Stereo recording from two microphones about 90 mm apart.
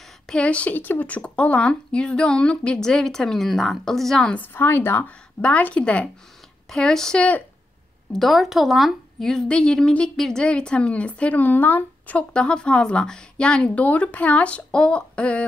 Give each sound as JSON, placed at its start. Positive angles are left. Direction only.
{"t": 0.3, "sound": "a woman's voice", "side_deg": 10}
{"t": 4.4, "sound": "a woman's voice", "side_deg": 25}